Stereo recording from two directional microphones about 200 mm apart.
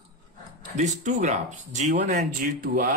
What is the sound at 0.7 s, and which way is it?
Speech, 35° right (ahead or behind).